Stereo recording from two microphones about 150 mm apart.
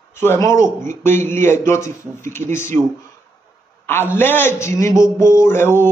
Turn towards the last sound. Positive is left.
turn(degrees=15)  # may be behind; listen again after turning